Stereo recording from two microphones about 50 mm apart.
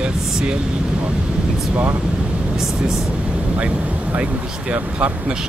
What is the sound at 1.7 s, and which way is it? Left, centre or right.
Speech, right.